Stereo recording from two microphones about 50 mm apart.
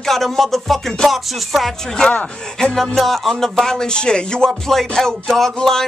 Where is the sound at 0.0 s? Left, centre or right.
Centre.